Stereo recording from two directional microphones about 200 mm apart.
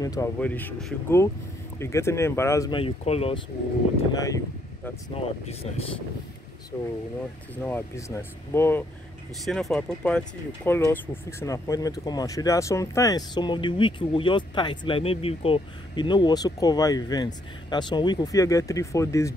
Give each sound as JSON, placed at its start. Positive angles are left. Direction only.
{"t": 0.0, "sound": "speech", "side_deg": 20}
{"t": 2.8, "sound": "speech", "side_deg": 30}
{"t": 4.1, "sound": "speech", "side_deg": 15}
{"t": 5.1, "sound": "speech", "side_deg": 30}
{"t": 6.7, "sound": "speech", "side_deg": 15}
{"t": 9.4, "sound": "speech", "side_deg": 0}